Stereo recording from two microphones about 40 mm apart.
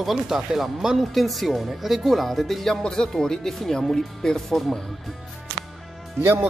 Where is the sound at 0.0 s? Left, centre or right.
Centre.